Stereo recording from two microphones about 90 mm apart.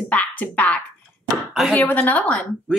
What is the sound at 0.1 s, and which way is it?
A woman's voice, 15° left (ahead or behind).